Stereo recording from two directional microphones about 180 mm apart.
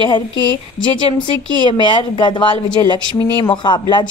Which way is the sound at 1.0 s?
25° left (ahead or behind).